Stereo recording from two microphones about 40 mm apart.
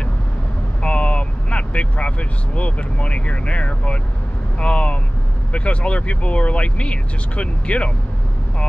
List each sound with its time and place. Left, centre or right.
0.8 s speech: left